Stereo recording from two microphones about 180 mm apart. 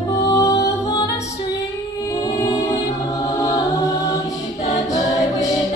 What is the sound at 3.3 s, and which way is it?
A capella, 20° left (ahead or behind).